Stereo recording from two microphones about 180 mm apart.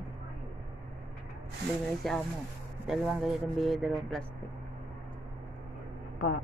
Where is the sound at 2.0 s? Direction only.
Centre (ahead or behind).